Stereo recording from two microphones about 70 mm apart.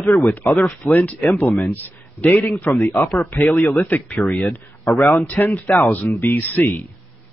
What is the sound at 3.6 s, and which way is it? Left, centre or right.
Speech, left.